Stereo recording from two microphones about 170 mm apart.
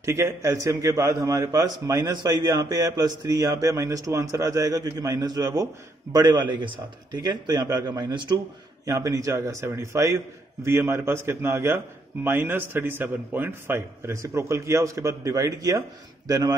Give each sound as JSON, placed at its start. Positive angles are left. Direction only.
{"t": 0.0, "sound": "a man's voice", "side_deg": -15}